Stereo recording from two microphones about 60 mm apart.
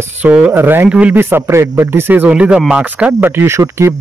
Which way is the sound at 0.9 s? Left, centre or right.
Right.